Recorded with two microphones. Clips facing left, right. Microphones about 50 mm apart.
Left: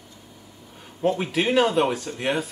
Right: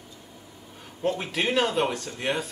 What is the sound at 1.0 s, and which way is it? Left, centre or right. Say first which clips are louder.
Speech: left 4 dB; centre.